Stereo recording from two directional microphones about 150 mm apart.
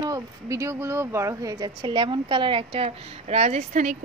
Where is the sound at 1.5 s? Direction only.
30° right (ahead or behind).